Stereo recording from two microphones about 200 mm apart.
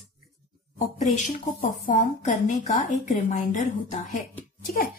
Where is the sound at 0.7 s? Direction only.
35° left (ahead or behind).